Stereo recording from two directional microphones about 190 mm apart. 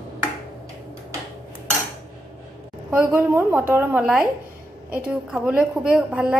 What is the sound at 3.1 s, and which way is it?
A woman's voice, 10° right (ahead or behind).